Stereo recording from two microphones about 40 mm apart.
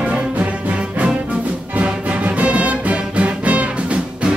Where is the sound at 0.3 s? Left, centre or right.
Right.